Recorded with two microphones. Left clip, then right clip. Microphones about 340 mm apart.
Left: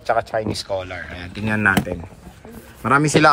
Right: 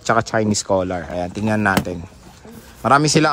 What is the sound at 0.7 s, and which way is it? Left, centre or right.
Speech, left.